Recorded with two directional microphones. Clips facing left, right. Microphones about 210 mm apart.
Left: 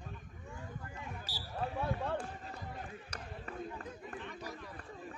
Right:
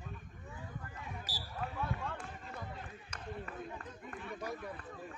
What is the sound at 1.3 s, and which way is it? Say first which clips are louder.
Basketball bounce: left 4 dB; 30° left (ahead or behind).